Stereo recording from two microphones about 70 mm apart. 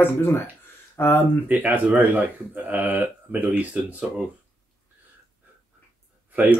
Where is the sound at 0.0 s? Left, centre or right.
Left.